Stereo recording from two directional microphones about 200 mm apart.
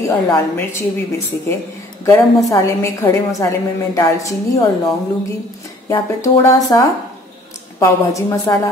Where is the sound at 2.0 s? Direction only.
15° left (ahead or behind).